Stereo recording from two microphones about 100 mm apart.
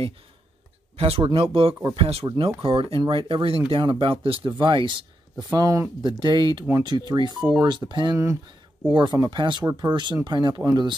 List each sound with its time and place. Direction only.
0.9 s speech: 80° right; by 1.9 s 65° right (ahead or behind)
2.0 s speech: 75° right (ahead or behind)
2.2 s speech: 60° right (ahead or behind)
3.8 s speech: 55° right (ahead or behind)
4.5 s speech: 50° right (ahead or behind)
5.5 s speech: 35° right (ahead or behind)
6.0 s speech: 50° right (ahead or behind)